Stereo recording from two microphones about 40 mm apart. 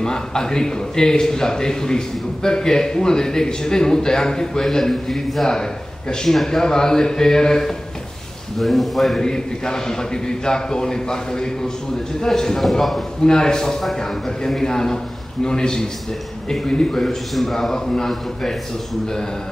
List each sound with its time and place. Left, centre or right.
0.0 s a man's voice: centre
8.5 s a man's voice: centre
9.2 s a man's voice: centre
17.3 s a man's voice: centre
17.6 s a man's voice: centre